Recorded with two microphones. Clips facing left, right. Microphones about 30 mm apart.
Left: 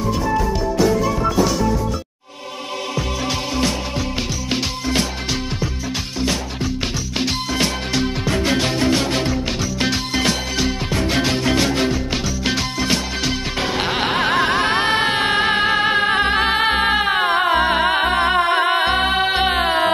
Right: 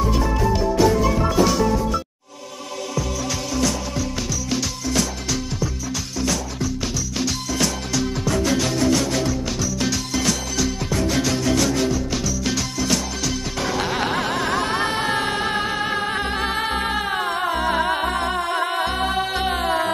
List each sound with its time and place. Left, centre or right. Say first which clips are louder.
0.2 s music: left 1 dB; centre
7.2 s music: left 3 dB; left